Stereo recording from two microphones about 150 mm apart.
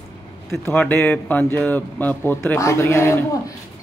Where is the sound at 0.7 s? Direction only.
15° left (ahead or behind).